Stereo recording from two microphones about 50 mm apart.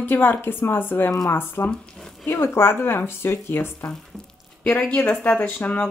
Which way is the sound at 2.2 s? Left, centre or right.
Left.